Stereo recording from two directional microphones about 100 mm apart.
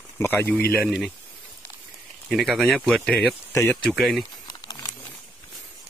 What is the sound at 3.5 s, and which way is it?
Speech, 25° left (ahead or behind).